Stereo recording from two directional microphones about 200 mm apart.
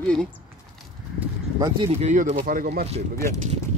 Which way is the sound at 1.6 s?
30° right (ahead or behind).